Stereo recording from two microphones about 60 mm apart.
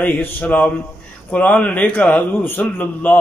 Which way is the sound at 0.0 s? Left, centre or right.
Left.